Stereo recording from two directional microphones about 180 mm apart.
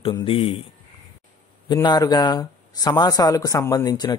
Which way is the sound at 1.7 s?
20° left (ahead or behind).